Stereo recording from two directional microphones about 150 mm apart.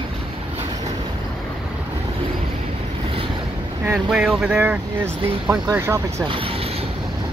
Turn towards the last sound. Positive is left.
turn(degrees=-20)  # may be behind; listen again after turning